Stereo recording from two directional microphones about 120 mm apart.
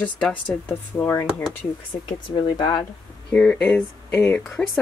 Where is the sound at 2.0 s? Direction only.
40° left (ahead or behind).